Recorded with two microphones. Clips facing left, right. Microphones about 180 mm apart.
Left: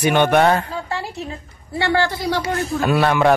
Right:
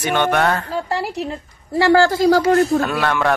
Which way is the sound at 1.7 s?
45° right (ahead or behind).